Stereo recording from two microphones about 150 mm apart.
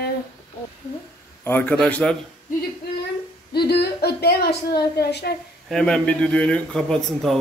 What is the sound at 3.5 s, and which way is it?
A woman's voice, 90° left.